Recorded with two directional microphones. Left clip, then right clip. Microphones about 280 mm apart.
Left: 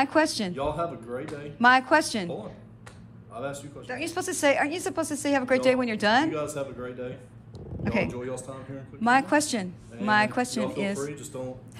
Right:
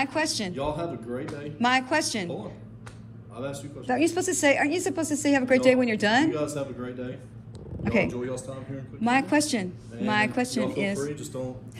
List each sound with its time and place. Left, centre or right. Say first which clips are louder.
0.0 s speech: left 3 dB; centre